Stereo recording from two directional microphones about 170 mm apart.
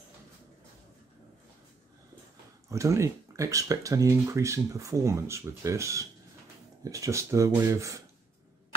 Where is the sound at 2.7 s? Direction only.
15° right (ahead or behind).